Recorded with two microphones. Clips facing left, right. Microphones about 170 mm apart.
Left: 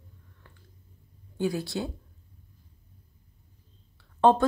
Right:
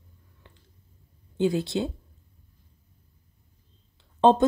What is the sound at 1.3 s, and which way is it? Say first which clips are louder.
Speech: right 5 dB; 25° right (ahead or behind).